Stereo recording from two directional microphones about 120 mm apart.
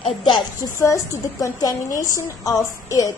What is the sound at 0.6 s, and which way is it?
A woman's voice, 25° left (ahead or behind).